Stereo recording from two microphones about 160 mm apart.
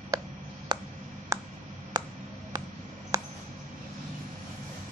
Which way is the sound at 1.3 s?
20° right (ahead or behind).